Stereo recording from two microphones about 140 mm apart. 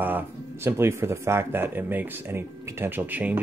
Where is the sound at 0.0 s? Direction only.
15° right (ahead or behind).